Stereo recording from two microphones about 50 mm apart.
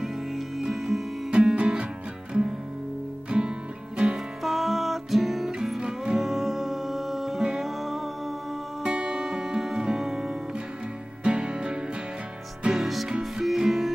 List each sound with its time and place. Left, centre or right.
0.0 s music: centre
1.3 s music: centre
3.3 s music: centre
4.4 s music: centre
5.8 s music: centre
6.1 s music: centre
8.8 s music: centre
12.7 s music: centre